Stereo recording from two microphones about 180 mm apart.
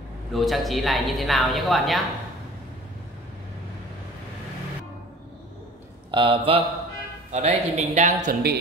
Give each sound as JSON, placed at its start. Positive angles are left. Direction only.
{"t": 0.3, "sound": "a woman's voice", "side_deg": 0}
{"t": 6.1, "sound": "a man's voice", "side_deg": -30}